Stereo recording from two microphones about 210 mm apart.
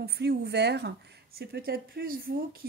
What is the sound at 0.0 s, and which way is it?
Speech, 50° right (ahead or behind).